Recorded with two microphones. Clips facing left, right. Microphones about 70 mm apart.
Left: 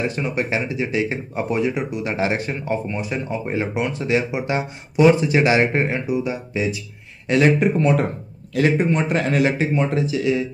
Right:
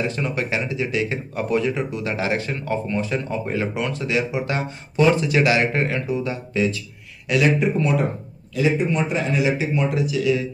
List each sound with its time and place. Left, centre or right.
0.0 s speech: left
7.2 s speech: left
8.5 s a man's voice: left
9.8 s speech: left